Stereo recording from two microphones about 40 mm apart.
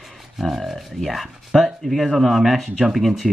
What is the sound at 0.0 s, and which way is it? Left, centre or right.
Speech, centre.